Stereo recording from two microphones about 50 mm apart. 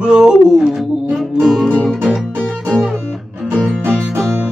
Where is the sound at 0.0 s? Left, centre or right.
Centre.